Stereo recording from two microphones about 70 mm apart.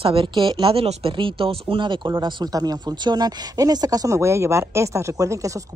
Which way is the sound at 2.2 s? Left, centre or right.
Right.